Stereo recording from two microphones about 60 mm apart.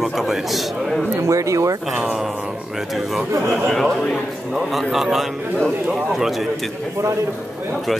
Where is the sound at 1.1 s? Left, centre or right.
Right.